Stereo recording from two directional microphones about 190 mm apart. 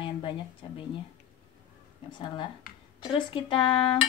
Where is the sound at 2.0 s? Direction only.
25° left (ahead or behind).